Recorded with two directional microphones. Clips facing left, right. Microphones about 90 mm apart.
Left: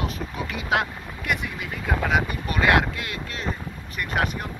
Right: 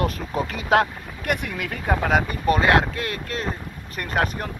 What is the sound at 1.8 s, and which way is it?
Speech, 40° right (ahead or behind).